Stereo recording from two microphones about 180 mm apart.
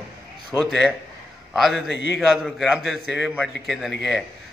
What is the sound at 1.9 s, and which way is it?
Speech, 80° left.